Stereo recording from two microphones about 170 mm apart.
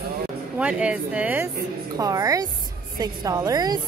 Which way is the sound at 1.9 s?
20° right (ahead or behind).